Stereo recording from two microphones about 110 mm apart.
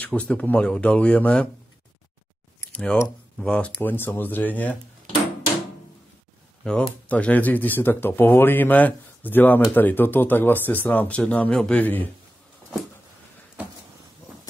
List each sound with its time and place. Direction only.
0.0 s speech: 10° left (ahead or behind)
2.7 s speech: 10° left (ahead or behind)
7.1 s speech: 15° left (ahead or behind)